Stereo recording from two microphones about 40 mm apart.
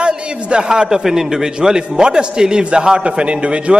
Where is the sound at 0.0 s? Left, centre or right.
Right.